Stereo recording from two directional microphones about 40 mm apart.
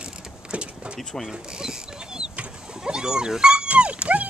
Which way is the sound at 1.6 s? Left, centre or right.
Centre.